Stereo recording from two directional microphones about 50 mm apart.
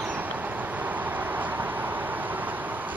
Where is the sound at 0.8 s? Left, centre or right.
Right.